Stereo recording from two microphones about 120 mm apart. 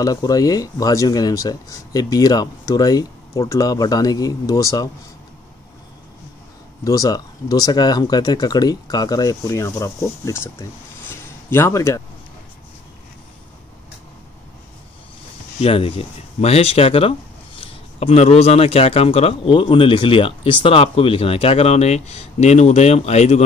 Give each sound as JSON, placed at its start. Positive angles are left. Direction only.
{"t": 0.0, "sound": "speech", "side_deg": 30}
{"t": 6.8, "sound": "speech", "side_deg": 30}
{"t": 11.1, "sound": "a sound", "side_deg": 20}
{"t": 15.6, "sound": "speech", "side_deg": 55}